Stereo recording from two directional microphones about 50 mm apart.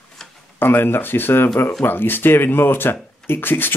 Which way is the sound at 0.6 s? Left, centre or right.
Left.